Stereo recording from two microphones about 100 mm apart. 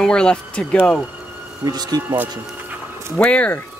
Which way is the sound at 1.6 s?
40° right (ahead or behind).